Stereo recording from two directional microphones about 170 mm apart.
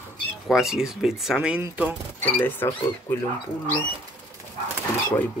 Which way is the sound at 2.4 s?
10° left (ahead or behind).